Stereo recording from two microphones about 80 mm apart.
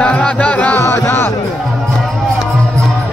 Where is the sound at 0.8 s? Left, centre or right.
Left.